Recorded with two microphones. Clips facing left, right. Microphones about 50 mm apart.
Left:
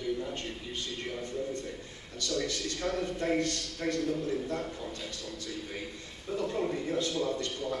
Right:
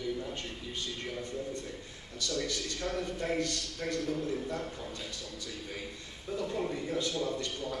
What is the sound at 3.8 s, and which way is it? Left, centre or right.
Speech, centre.